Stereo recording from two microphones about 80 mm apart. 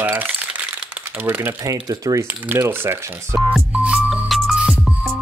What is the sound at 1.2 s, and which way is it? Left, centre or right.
Speech, right.